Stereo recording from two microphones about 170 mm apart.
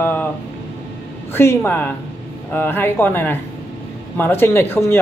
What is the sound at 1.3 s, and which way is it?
A man's voice, 15° left (ahead or behind).